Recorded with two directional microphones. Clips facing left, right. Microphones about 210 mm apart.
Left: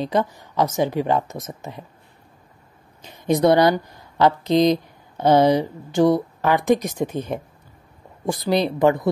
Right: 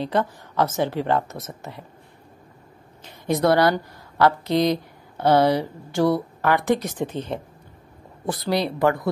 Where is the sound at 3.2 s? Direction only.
20° left (ahead or behind).